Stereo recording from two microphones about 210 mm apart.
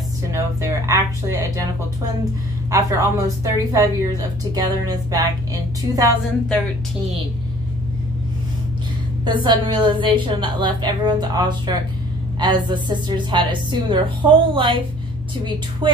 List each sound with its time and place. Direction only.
0.3 s speech: 15° right (ahead or behind)
2.7 s speech: 15° right (ahead or behind)
9.2 s a woman's voice: 20° right (ahead or behind)
15.8 s a woman's voice: 20° right (ahead or behind)